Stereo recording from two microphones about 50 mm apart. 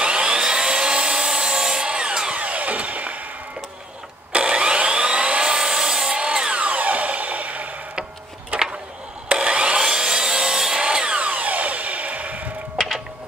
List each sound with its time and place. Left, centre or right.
0.0 s wood: centre
4.3 s wood: right
9.3 s wood: right
12.7 s music: centre